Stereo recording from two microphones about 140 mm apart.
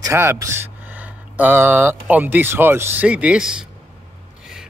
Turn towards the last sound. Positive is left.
turn(degrees=-5)  # may be behind; listen again after turning